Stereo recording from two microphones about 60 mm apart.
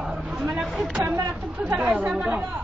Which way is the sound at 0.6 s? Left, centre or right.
Centre.